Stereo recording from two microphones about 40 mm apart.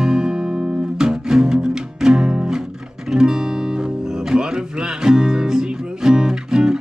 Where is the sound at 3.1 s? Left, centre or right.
Centre.